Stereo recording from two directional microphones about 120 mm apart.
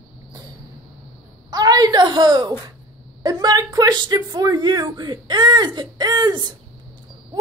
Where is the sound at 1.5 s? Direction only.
35° right (ahead or behind).